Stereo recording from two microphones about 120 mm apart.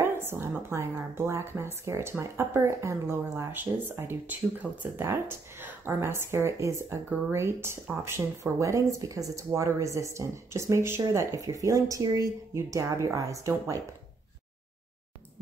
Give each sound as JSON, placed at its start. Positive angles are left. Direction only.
{"t": 0.0, "sound": "a woman's voice", "side_deg": -20}